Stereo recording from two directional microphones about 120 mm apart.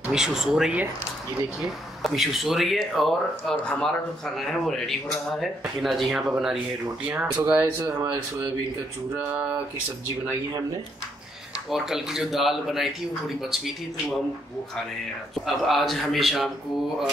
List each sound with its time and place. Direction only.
0.1 s speech: 5° right (ahead or behind)
7.4 s a sound: 15° right (ahead or behind)
8.0 s speech: 20° right (ahead or behind)
9.1 s a sound: 10° right (ahead or behind)
11.7 s speech: centre (ahead or behind)
15.3 s speech: centre (ahead or behind)